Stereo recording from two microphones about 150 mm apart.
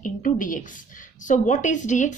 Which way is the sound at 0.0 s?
60° left (ahead or behind).